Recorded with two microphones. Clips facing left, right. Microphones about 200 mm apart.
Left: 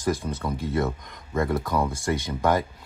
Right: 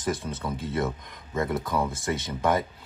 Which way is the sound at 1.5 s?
5° right (ahead or behind).